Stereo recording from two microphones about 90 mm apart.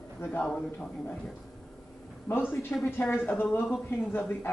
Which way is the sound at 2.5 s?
25° left (ahead or behind).